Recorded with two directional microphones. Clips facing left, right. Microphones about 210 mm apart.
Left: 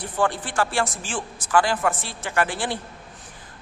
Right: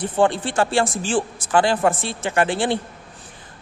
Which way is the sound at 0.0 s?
25° right (ahead or behind).